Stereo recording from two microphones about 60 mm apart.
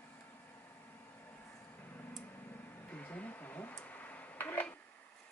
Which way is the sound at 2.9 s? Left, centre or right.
Left.